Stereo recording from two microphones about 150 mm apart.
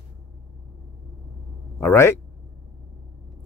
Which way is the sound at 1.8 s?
15° left (ahead or behind).